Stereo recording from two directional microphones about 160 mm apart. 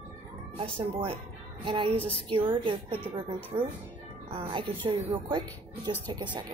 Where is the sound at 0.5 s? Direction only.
35° right (ahead or behind).